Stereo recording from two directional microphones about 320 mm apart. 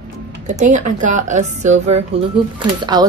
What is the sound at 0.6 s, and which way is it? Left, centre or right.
A woman's voice, right.